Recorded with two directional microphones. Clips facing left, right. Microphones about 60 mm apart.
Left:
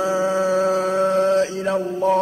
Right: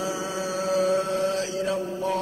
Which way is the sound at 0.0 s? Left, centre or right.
Left.